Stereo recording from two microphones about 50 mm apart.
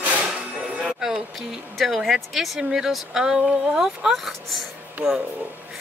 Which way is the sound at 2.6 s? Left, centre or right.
Centre.